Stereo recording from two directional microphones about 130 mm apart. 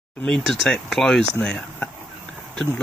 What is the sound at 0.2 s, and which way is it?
Speech, centre (ahead or behind).